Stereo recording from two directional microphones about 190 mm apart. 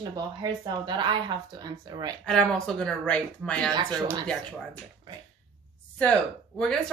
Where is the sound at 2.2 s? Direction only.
5° left (ahead or behind).